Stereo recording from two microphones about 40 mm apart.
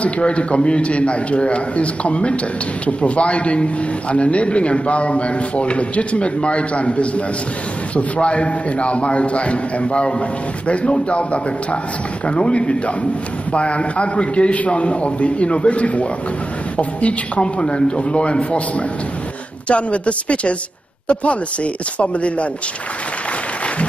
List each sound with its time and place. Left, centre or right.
0.0 s a man's voice: left
12.3 s a man's voice: left